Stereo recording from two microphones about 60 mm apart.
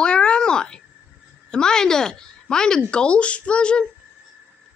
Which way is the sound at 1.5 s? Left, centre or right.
Centre.